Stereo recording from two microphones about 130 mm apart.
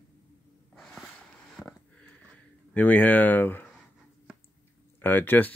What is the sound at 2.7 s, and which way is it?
Speech, 10° left (ahead or behind).